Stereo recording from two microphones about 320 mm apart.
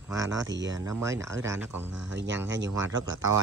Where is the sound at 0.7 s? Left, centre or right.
Centre.